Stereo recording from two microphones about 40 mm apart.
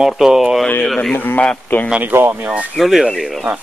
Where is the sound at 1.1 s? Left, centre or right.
Left.